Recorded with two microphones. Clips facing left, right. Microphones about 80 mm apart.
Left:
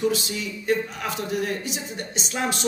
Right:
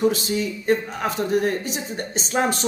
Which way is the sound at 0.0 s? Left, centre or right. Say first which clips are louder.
Right 4 dB; right.